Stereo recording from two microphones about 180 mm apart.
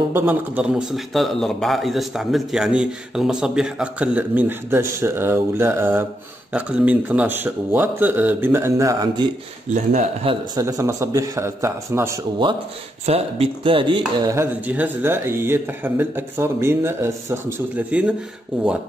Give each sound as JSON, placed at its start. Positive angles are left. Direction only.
{"t": 0.1, "sound": "a man's voice", "side_deg": -10}
{"t": 9.8, "sound": "speech", "side_deg": -40}
{"t": 10.5, "sound": "speech", "side_deg": -20}
{"t": 13.0, "sound": "speech", "side_deg": -35}
{"t": 14.3, "sound": "a man's voice", "side_deg": -10}